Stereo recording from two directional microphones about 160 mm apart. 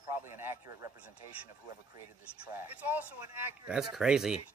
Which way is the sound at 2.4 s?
10° right (ahead or behind).